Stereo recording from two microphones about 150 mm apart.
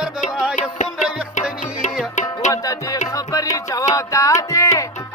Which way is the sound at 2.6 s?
25° left (ahead or behind).